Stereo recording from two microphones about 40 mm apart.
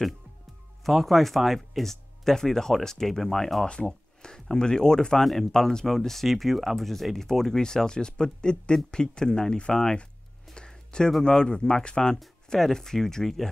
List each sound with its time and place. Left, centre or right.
0.8 s speech: centre
4.5 s speech: centre
5.2 s speech: centre
10.5 s a sound: centre
11.2 s speech: left
12.5 s speech: centre